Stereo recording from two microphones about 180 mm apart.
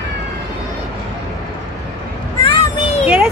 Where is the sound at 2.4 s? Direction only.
30° left (ahead or behind).